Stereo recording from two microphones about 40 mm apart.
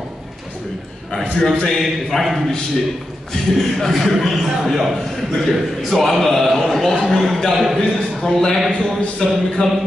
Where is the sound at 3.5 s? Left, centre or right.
Centre.